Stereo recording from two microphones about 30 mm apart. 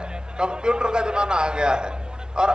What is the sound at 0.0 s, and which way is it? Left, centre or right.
A man's voice, right.